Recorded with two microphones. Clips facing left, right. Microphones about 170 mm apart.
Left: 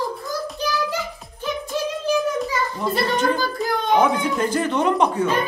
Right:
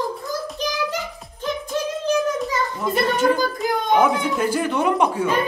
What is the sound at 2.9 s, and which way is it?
Speech, 10° right (ahead or behind).